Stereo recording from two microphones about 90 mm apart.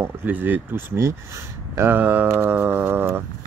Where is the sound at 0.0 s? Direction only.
20° right (ahead or behind).